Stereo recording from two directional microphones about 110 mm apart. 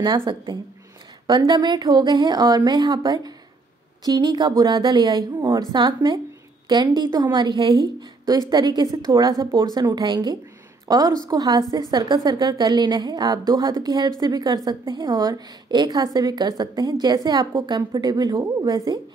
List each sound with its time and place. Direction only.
0.0 s a woman's voice: 45° right (ahead or behind)